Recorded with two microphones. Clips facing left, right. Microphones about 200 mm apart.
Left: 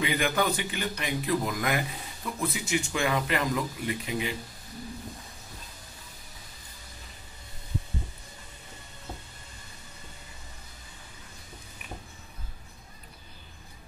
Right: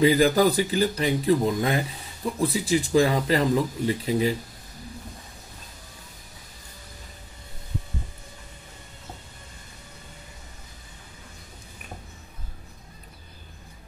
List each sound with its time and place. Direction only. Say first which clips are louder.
0.0 s speech: right 9 dB; 35° right (ahead or behind)